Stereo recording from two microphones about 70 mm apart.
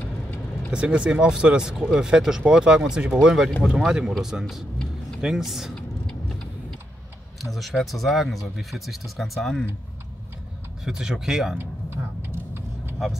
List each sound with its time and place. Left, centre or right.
0.0 s vehicle: left
0.7 s speech: centre
5.8 s vehicle: centre
7.5 s speech: centre
10.8 s speech: centre